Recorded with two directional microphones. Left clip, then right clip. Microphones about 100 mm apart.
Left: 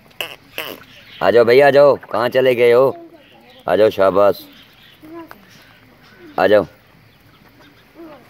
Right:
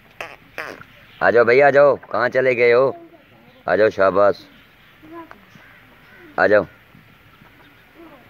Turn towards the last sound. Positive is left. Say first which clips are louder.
# left 2 dB
turn(degrees=25)  # may be behind; listen again after turning